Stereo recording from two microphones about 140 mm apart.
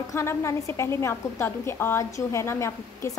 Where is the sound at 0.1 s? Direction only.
20° left (ahead or behind).